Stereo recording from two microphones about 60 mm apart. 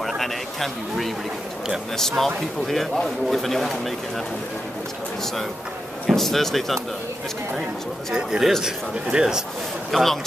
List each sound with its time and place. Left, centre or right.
0.0 s a man's voice: centre
6.0 s speech: centre
8.1 s a man's voice: centre
9.8 s speech: centre